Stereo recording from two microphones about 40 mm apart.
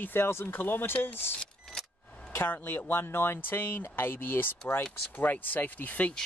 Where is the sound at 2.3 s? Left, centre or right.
Left.